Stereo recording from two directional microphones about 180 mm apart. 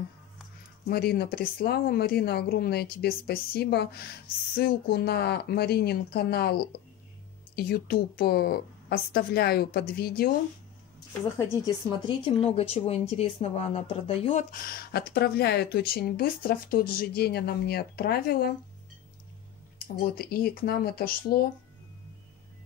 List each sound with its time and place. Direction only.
0.8 s speech: 60° left (ahead or behind)
11.3 s speech: 20° left (ahead or behind)
12.3 s speech: 35° left (ahead or behind)
14.7 s speech: 55° left (ahead or behind)
19.8 s speech: 55° left (ahead or behind)